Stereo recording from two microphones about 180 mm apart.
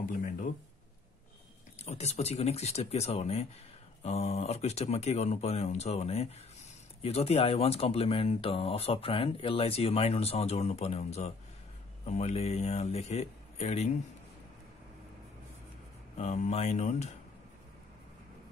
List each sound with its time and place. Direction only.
0.0 s speech: 50° left (ahead or behind)
1.8 s speech: 35° left (ahead or behind)
16.2 s speech: 35° left (ahead or behind)